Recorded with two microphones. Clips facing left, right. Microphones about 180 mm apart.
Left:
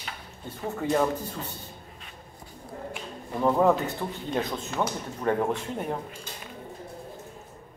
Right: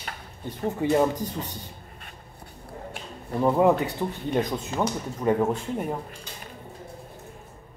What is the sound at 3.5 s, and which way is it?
Speech, 15° right (ahead or behind).